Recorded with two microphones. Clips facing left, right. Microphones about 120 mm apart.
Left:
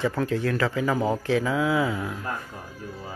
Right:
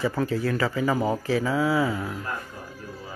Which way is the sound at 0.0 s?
5° right (ahead or behind).